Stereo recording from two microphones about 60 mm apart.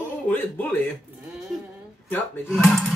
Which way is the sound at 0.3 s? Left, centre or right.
Left.